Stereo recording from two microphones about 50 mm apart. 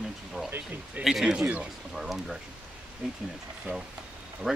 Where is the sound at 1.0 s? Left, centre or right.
Centre.